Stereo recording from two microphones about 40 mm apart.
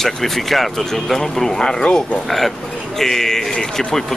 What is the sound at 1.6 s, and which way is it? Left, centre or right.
Speech, centre.